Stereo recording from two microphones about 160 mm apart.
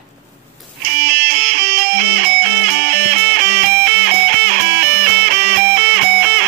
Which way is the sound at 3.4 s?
80° right.